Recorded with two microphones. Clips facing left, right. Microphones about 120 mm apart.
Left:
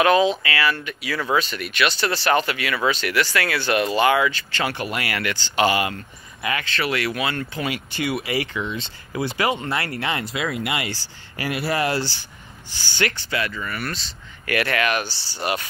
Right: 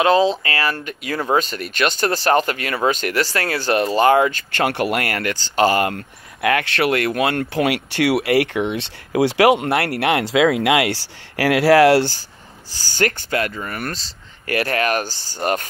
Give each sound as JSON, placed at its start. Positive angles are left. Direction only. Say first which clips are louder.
{"t": 0.0, "sound": "speech", "louder": "right 2 dB", "side_deg": -30}
{"t": 12.7, "sound": "speech", "louder": "right 4 dB", "side_deg": -40}